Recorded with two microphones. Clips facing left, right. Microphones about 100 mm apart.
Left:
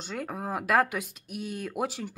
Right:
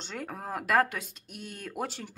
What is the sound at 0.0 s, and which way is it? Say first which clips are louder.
Speech: left 4 dB; 5° left (ahead or behind).